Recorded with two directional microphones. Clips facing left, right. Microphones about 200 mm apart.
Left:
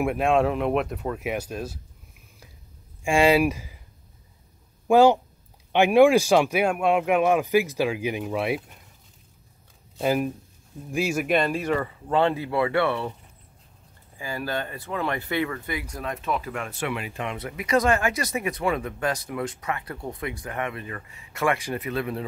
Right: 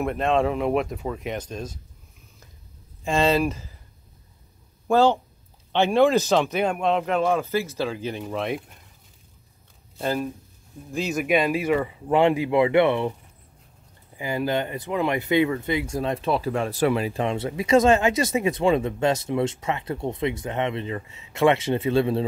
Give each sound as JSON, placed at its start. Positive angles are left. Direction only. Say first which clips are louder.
{"t": 0.0, "sound": "speech", "louder": "left 1 dB", "side_deg": 10}
{"t": 3.0, "sound": "speech", "louder": "left 2 dB", "side_deg": 10}
{"t": 4.8, "sound": "speech", "louder": "left 2 dB", "side_deg": 15}
{"t": 10.0, "sound": "speech", "louder": "left 2 dB", "side_deg": 15}
{"t": 11.2, "sound": "speech", "louder": "right 6 dB", "side_deg": -5}
{"t": 14.1, "sound": "speech", "louder": "right 5 dB", "side_deg": -20}